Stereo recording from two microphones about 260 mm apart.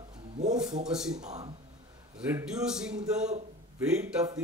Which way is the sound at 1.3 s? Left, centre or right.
Right.